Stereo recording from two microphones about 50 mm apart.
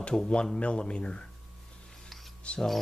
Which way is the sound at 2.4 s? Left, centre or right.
Left.